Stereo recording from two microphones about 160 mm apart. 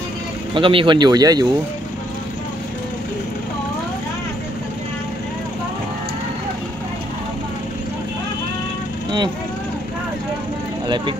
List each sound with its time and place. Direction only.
0.6 s speech: 35° right (ahead or behind)